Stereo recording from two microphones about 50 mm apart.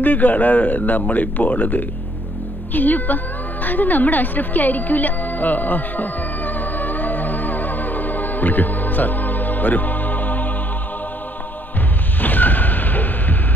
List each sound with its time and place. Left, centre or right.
0.0 s speech: left
3.6 s music: left
12.2 s a sound: left